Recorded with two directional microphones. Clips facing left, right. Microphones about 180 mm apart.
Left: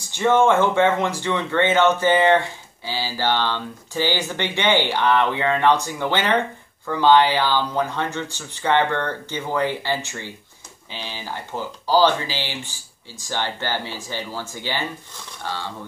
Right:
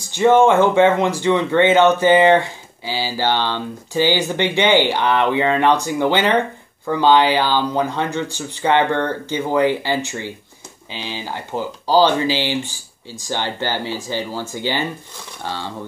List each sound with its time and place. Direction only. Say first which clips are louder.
0.2 s speech: right 4 dB; 15° right (ahead or behind)